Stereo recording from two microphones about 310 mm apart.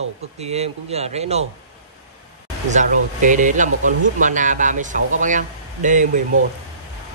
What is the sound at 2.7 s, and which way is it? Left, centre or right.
Speech, right.